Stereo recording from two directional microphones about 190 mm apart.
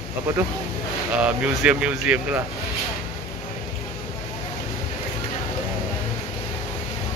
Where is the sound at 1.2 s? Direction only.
5° right (ahead or behind).